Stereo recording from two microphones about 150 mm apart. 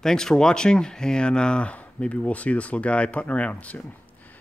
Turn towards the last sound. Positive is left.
turn(degrees=10)  # may be behind; listen again after turning